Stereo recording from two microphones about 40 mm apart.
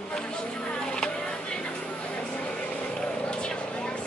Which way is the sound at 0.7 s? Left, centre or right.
Left.